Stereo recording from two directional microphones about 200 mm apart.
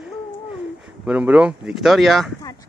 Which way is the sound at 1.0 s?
5° right (ahead or behind).